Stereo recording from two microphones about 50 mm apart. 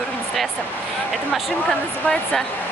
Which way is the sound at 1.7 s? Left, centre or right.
Centre.